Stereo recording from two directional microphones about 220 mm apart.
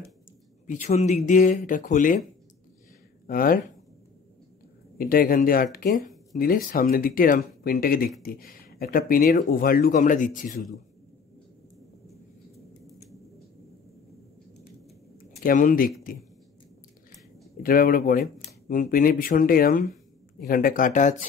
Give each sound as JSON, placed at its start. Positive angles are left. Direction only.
{"t": 0.7, "sound": "speech", "side_deg": 30}
{"t": 3.3, "sound": "speech", "side_deg": 40}
{"t": 4.9, "sound": "speech", "side_deg": 40}
{"t": 15.1, "sound": "a sound", "side_deg": 40}
{"t": 17.6, "sound": "speech", "side_deg": 40}